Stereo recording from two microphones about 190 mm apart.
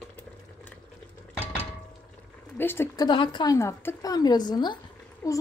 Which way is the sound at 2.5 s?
10° left (ahead or behind).